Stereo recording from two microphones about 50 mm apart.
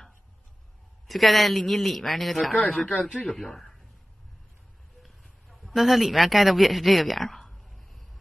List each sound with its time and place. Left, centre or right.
1.0 s speech: centre
3.1 s speech: left
3.3 s speech: centre
5.0 s a sound: centre
5.8 s speech: centre